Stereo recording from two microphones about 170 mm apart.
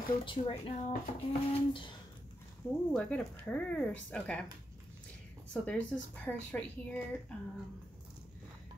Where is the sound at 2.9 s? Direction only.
10° left (ahead or behind).